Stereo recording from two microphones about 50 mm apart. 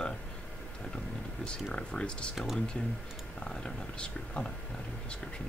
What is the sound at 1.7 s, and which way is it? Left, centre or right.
Speech, centre.